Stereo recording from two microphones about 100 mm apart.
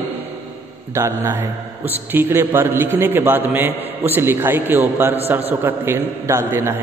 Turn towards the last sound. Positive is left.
turn(degrees=-25)  # may be behind; listen again after turning